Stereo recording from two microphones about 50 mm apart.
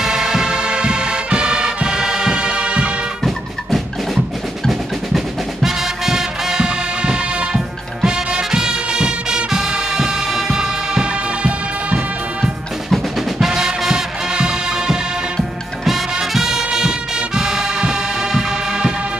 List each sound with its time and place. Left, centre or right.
0.0 s music: centre
3.3 s music: centre
12.9 s music: centre
15.3 s music: centre